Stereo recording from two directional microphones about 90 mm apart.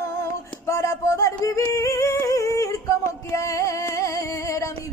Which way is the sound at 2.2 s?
35° left (ahead or behind).